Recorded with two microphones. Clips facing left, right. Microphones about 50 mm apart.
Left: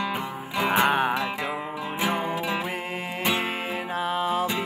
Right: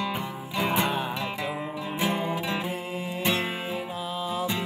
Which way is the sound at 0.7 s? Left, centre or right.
Left.